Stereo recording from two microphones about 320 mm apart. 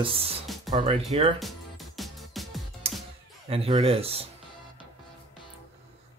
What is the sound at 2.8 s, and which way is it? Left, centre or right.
Music, centre.